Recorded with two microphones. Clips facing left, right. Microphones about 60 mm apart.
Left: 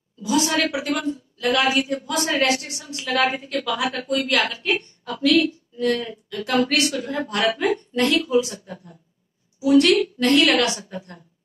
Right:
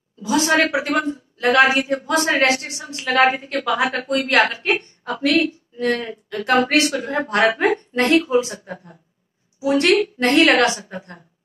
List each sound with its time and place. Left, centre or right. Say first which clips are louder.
0.2 s a woman's voice: right 3 dB; right